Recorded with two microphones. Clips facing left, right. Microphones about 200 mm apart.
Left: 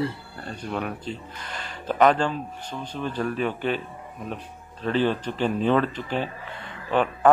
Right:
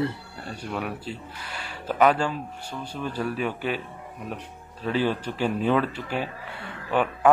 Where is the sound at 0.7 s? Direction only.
5° right (ahead or behind).